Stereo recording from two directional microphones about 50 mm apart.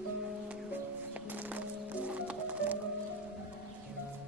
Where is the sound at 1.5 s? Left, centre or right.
Right.